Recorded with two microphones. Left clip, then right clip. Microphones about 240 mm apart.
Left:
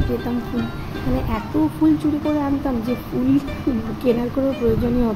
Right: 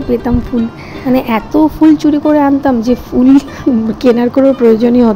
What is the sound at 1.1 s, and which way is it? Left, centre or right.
Speech, right.